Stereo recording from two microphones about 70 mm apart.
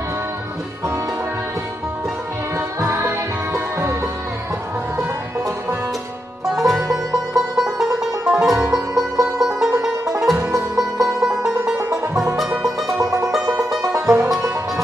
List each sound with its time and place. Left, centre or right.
2.8 s music: right
6.5 s music: centre
13.3 s music: centre